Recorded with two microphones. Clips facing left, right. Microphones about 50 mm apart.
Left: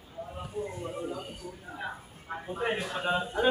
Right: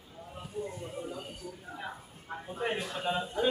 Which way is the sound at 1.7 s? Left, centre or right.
Centre.